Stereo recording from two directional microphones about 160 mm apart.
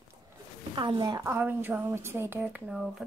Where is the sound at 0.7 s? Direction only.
25° right (ahead or behind).